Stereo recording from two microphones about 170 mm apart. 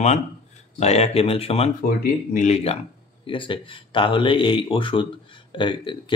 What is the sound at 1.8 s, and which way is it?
Speech, 60° left (ahead or behind).